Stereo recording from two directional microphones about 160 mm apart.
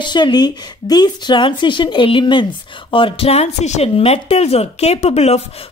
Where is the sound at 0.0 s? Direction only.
25° left (ahead or behind).